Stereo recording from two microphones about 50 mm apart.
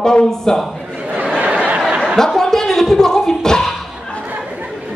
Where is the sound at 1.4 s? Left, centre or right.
Right.